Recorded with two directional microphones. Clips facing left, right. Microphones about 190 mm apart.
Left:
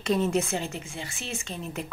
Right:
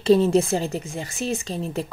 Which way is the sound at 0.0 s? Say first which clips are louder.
Right 8 dB; 30° right (ahead or behind).